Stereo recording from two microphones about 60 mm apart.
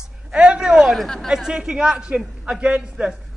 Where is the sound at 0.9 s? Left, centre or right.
Centre.